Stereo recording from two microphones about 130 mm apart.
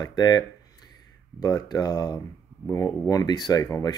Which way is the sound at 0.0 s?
35° left (ahead or behind).